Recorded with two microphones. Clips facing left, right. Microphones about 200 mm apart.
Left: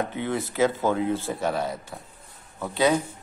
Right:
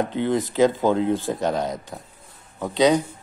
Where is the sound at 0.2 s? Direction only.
15° right (ahead or behind).